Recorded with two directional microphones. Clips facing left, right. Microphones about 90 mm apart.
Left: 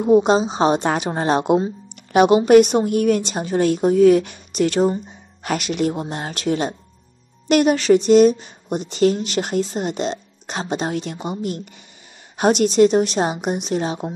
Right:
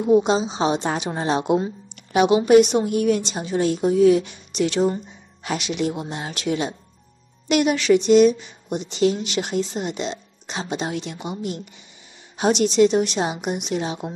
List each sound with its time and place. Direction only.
0.0 s speech: 45° left (ahead or behind)